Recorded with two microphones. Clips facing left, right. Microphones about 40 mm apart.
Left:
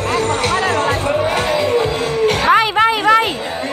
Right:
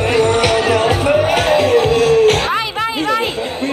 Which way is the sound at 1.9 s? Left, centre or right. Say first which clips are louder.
Right 6 dB; right.